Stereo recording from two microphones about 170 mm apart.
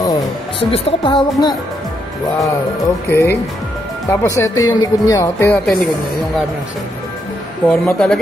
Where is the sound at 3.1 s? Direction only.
15° left (ahead or behind).